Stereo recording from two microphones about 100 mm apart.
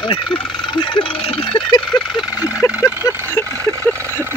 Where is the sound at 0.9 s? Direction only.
65° left (ahead or behind).